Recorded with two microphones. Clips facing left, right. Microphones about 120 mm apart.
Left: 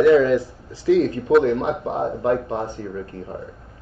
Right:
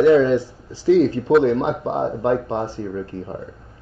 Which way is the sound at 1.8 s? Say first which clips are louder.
Right 2 dB; centre (ahead or behind).